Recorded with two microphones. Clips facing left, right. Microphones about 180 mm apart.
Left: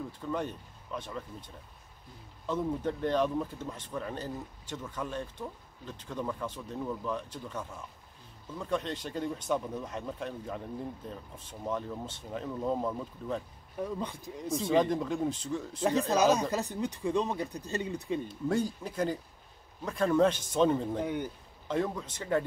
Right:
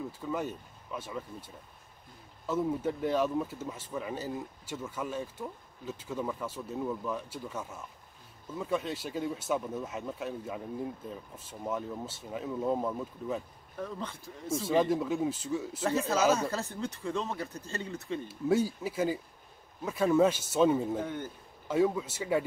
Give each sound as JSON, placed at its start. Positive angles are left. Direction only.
{"t": 0.3, "sound": "speech", "side_deg": -5}
{"t": 2.4, "sound": "speech", "side_deg": -5}
{"t": 13.7, "sound": "speech", "side_deg": 15}
{"t": 14.6, "sound": "speech", "side_deg": -5}
{"t": 16.1, "sound": "speech", "side_deg": 15}
{"t": 18.3, "sound": "speech", "side_deg": -5}
{"t": 21.0, "sound": "speech", "side_deg": 15}
{"t": 21.6, "sound": "speech", "side_deg": -5}